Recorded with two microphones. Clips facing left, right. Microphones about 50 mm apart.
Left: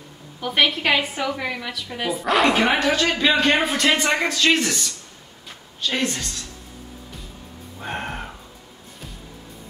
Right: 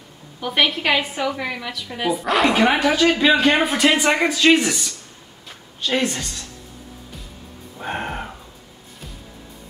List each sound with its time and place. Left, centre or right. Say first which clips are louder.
0.4 s a woman's voice: even; centre
7.8 s music: right 3 dB; centre